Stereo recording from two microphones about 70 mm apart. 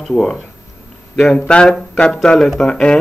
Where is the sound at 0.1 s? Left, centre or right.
Centre.